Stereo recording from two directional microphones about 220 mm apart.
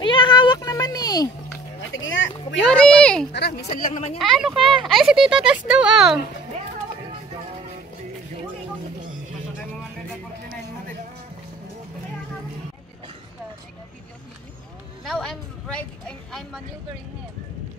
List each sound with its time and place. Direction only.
0.0 s cat: 20° left (ahead or behind)
1.9 s a sound: 60° left (ahead or behind)
2.6 s speech: 5° left (ahead or behind)
3.3 s a woman's voice: 50° left (ahead or behind)
3.6 s speech: 30° left (ahead or behind)
4.2 s a child's voice: centre (ahead or behind)
15.0 s a sound: centre (ahead or behind)